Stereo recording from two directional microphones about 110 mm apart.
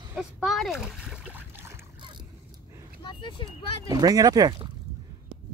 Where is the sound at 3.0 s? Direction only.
45° left (ahead or behind).